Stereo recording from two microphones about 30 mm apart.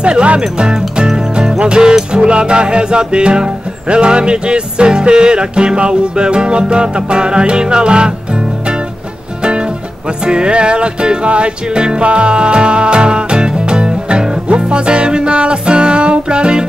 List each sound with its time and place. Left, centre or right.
0.0 s music: right
9.4 s music: right